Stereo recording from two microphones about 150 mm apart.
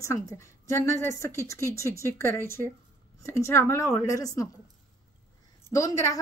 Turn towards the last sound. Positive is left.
turn(degrees=20)  # may be behind; listen again after turning